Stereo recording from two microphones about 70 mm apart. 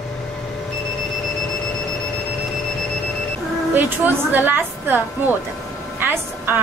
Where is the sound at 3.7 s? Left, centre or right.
Right.